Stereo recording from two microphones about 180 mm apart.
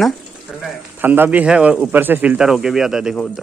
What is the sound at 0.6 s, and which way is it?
Speech, 10° right (ahead or behind).